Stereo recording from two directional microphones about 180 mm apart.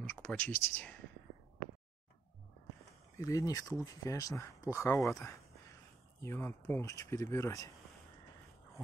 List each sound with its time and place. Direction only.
0.1 s speech: 10° left (ahead or behind)
3.2 s speech: 20° left (ahead or behind)
5.2 s a sound: 15° left (ahead or behind)
6.2 s speech: 15° left (ahead or behind)